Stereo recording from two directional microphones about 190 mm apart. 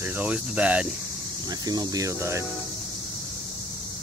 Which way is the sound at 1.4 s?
20° right (ahead or behind).